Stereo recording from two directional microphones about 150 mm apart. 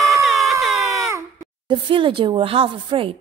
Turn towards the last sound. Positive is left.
turn(degrees=-35)  # may be behind; listen again after turning